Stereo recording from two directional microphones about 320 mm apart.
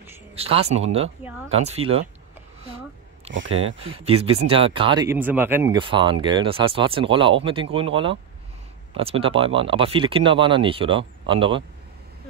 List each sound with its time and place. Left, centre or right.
0.4 s speech: centre
3.3 s speech: right
3.8 s speech: centre